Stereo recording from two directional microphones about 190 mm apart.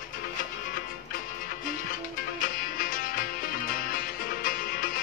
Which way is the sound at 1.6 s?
45° left (ahead or behind).